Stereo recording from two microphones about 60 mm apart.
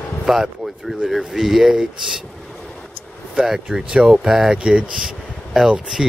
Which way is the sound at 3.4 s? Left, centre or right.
Centre.